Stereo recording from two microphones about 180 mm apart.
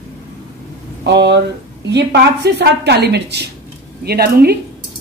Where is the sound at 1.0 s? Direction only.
70° right (ahead or behind).